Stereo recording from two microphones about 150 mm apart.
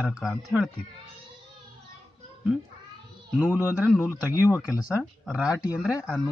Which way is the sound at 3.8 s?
10° left (ahead or behind).